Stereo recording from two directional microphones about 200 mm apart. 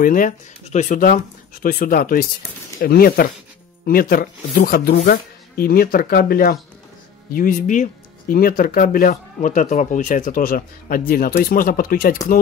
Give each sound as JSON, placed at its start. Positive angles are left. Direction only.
{"t": 0.0, "sound": "speech", "side_deg": 40}